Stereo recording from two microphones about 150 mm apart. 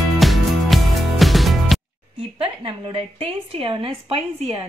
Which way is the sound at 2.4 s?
35° right (ahead or behind).